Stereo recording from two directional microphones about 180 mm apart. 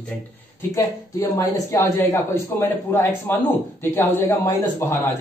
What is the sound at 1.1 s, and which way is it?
Speech, 15° left (ahead or behind).